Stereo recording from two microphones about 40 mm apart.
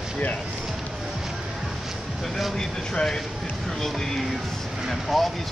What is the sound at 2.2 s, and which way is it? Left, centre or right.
Speech, centre.